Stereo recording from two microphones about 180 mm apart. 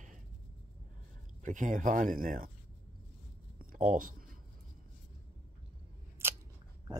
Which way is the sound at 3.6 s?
50° right (ahead or behind).